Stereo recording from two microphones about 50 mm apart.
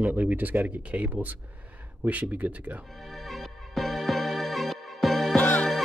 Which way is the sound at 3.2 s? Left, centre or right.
Centre.